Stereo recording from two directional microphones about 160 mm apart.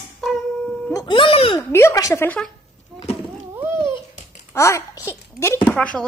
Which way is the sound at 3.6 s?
15° right (ahead or behind).